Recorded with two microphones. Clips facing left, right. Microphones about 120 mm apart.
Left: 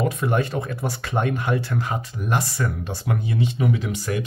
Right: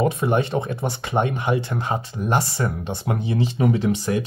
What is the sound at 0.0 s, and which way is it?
Speech, 25° right (ahead or behind).